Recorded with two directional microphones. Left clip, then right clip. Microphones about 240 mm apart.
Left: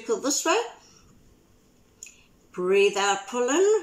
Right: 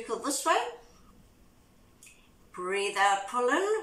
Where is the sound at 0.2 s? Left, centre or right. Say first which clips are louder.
Even; centre.